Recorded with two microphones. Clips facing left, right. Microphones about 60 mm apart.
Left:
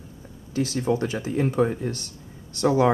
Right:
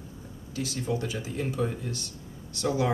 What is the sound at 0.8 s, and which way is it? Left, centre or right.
Speech, left.